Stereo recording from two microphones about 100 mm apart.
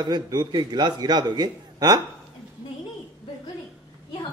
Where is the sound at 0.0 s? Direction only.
45° right (ahead or behind).